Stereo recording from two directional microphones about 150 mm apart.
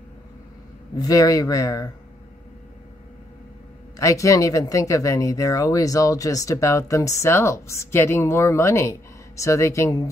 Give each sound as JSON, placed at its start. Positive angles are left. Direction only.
{"t": 0.9, "sound": "speech", "side_deg": 25}
{"t": 3.9, "sound": "speech", "side_deg": 20}